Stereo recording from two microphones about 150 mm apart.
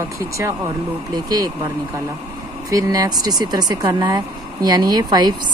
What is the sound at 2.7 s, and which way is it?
Speech, 25° right (ahead or behind).